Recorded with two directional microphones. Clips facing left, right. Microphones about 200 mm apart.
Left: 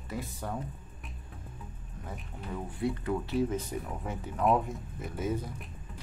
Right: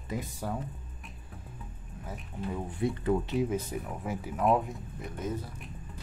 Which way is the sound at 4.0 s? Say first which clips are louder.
Right 1 dB; 5° right (ahead or behind).